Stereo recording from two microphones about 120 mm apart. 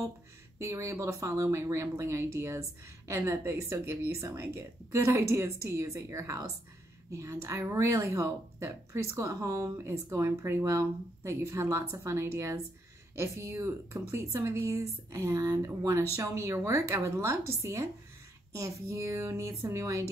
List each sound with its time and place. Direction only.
0.6 s speech: 25° right (ahead or behind)